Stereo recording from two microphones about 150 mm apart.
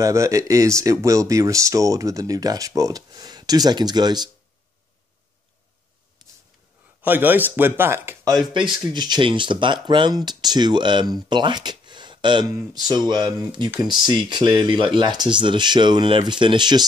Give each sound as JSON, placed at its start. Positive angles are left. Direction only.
{"t": 0.0, "sound": "speech", "side_deg": -20}
{"t": 6.2, "sound": "a sound", "side_deg": -25}
{"t": 7.0, "sound": "speech", "side_deg": -10}
{"t": 8.4, "sound": "speech", "side_deg": -30}